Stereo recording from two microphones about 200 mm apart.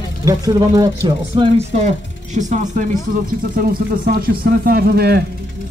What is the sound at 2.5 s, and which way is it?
Speech, 40° right (ahead or behind).